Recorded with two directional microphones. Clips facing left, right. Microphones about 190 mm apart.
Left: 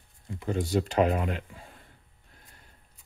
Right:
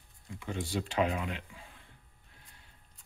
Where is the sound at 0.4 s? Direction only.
40° left (ahead or behind).